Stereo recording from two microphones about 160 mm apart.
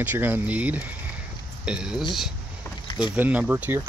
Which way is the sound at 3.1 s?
10° right (ahead or behind).